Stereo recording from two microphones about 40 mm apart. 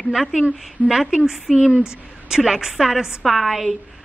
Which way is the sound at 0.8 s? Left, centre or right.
Centre.